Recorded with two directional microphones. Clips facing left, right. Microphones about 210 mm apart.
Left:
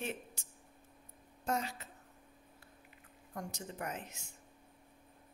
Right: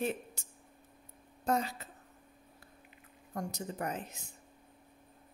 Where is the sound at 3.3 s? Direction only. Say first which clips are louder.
Right 5 dB; 40° right (ahead or behind).